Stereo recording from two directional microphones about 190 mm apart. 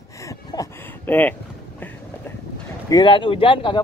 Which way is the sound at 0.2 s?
15° left (ahead or behind).